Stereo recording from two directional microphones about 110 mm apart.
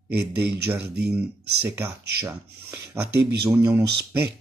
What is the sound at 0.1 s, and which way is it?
Speech, 20° right (ahead or behind).